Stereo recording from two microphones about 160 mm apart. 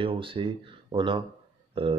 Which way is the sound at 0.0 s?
35° right (ahead or behind).